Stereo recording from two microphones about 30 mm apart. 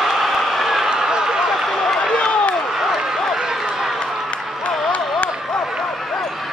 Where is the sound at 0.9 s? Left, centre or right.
Right.